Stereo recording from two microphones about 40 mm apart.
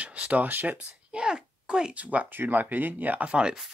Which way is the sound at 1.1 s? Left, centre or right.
Right.